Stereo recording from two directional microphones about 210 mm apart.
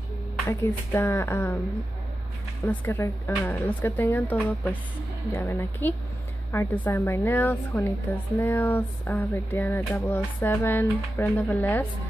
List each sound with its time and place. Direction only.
0.5 s a woman's voice: 10° left (ahead or behind)
2.6 s a woman's voice: 10° left (ahead or behind)